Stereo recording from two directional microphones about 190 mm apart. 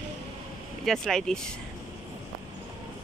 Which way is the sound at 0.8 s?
Centre (ahead or behind).